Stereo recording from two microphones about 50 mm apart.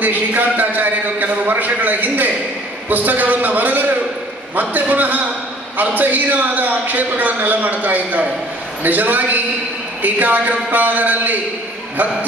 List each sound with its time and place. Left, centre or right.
0.0 s a man's voice: right